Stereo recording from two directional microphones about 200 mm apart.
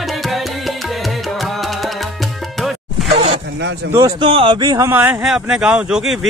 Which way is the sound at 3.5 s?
60° right (ahead or behind).